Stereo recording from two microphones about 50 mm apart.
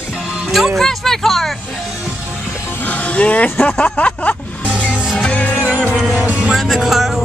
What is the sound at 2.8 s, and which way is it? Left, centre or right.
Speech, left.